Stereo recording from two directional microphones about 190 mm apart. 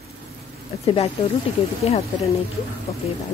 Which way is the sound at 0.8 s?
30° left (ahead or behind).